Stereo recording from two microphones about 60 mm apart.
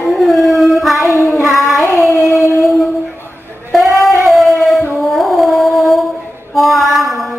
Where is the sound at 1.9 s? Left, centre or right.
Left.